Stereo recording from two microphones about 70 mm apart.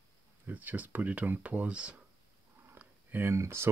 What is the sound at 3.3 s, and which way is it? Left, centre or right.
Speech, right.